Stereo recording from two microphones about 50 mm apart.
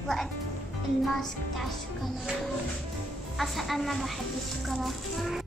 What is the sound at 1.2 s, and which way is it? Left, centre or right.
Speech, centre.